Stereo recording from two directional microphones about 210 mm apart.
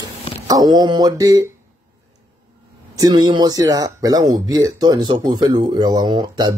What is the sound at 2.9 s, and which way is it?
Speech, 20° right (ahead or behind).